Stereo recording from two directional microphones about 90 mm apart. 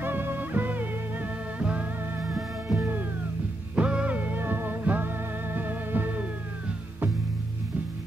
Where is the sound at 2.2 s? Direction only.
10° right (ahead or behind).